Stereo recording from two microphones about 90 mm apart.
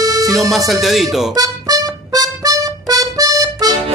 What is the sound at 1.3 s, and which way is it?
Music, 45° right (ahead or behind).